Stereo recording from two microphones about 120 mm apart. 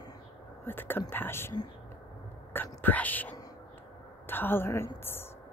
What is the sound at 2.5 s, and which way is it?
A woman's voice, 15° left (ahead or behind).